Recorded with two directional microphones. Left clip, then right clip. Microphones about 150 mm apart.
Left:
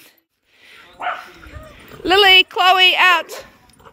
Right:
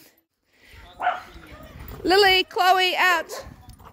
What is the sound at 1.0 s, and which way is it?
Bow-wow, 65° left (ahead or behind).